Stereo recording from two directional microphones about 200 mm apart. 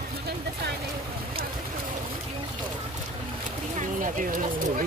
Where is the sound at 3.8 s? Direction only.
40° right (ahead or behind).